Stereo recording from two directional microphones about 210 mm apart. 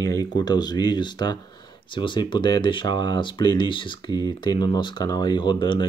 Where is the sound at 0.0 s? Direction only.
15° left (ahead or behind).